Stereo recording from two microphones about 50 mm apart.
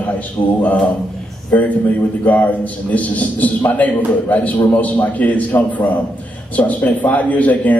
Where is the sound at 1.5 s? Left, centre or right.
Left.